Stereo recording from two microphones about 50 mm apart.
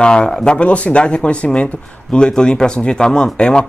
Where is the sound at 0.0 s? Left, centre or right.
Centre.